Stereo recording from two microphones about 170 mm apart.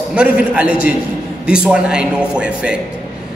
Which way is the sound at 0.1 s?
5° right (ahead or behind).